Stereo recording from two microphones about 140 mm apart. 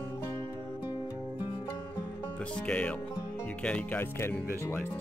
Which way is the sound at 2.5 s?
5° left (ahead or behind).